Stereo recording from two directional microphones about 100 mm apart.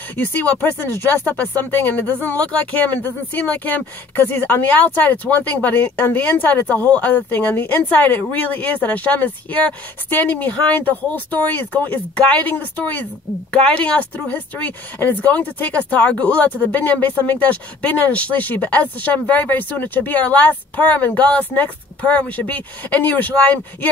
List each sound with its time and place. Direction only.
0.2 s speech: 15° left (ahead or behind)